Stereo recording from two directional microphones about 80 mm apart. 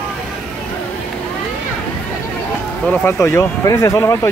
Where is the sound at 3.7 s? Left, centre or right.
Left.